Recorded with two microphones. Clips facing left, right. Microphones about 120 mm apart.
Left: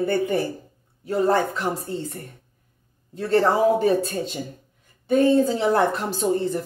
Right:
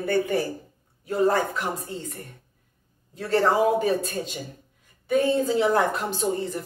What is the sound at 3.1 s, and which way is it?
Speech, 30° left (ahead or behind).